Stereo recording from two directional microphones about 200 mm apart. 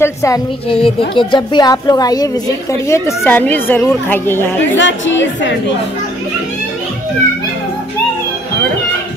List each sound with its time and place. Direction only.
0.0 s a woman's voice: 15° left (ahead or behind)
4.7 s a woman's voice: 65° left (ahead or behind)